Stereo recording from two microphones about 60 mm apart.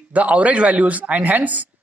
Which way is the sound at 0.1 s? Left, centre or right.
Right.